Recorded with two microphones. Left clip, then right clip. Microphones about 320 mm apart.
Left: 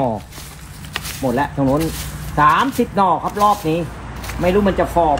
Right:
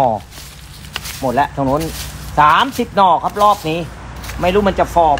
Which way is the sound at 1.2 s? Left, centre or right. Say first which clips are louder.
Right 3 dB; centre.